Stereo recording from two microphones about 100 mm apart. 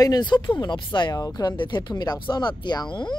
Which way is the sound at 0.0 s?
45° left (ahead or behind).